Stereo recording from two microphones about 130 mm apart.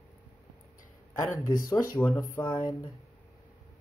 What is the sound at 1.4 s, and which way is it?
Speech, 90° left.